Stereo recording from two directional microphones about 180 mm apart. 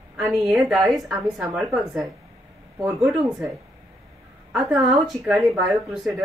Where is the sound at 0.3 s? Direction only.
Centre (ahead or behind).